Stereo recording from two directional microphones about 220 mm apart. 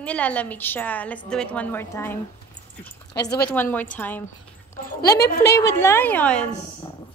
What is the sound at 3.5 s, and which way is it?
A woman's voice, 10° left (ahead or behind).